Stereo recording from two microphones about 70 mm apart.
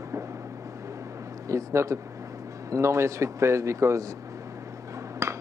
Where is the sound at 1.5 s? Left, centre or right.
Right.